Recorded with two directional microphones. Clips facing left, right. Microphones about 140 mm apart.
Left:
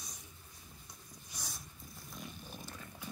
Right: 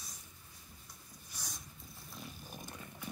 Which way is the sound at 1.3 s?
15° left (ahead or behind).